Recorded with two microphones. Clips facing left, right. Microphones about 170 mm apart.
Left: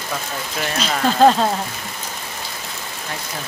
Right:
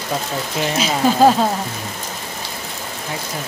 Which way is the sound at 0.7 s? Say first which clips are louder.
Right 1 dB; 10° right (ahead or behind).